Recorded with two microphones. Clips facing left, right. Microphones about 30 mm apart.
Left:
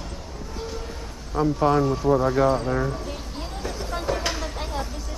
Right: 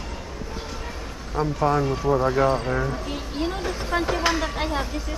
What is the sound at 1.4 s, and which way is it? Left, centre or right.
Speech, centre.